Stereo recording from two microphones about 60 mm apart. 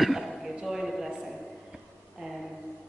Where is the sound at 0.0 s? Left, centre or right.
Centre.